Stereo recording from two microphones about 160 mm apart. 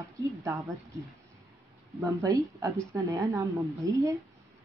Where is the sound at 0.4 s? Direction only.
20° right (ahead or behind).